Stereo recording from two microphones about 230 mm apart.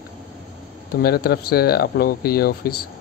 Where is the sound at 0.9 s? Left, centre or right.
Left.